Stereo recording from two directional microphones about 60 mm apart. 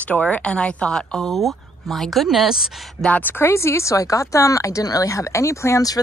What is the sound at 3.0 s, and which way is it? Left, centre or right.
Speech, left.